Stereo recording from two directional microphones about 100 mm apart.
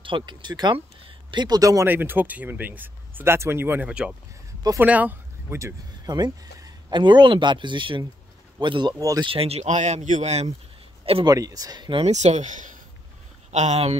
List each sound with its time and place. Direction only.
0.0 s speech: 55° right (ahead or behind); by 1.9 s 35° right (ahead or behind)
1.9 s speech: 20° right (ahead or behind)
6.0 s a sound: 40° right (ahead or behind)
7.0 s speech: 50° right (ahead or behind)
9.2 s speech: 65° right (ahead or behind); by 10.5 s 90° right
11.2 s speech: 35° right (ahead or behind)
11.9 s speech: 90° right
13.5 s speech: 90° right